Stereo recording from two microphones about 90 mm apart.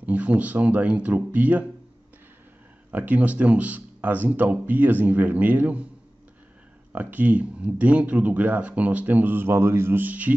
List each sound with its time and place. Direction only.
0.0 s speech: 15° right (ahead or behind)
2.9 s speech: 20° right (ahead or behind)
6.9 s speech: 15° right (ahead or behind)